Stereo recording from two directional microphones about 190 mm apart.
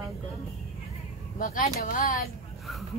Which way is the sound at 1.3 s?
45° left (ahead or behind).